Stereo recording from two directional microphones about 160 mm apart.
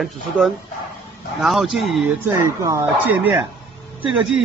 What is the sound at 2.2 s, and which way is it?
A man's voice, 20° right (ahead or behind).